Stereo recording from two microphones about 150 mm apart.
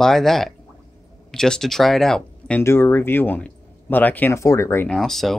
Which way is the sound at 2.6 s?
15° left (ahead or behind).